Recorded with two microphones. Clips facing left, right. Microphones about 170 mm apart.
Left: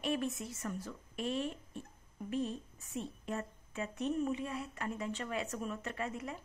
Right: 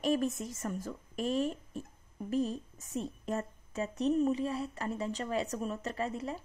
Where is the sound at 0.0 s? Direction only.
40° right (ahead or behind).